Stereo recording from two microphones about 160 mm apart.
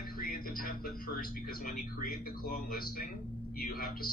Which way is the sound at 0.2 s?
65° left (ahead or behind).